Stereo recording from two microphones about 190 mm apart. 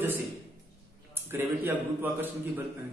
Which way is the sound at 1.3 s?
15° right (ahead or behind).